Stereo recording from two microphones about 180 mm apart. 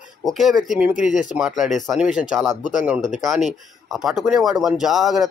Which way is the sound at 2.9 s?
5° right (ahead or behind).